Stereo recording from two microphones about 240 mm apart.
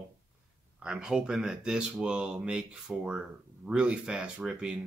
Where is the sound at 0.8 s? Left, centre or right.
Centre.